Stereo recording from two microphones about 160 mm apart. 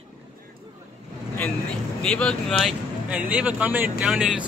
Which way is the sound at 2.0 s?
5° left (ahead or behind).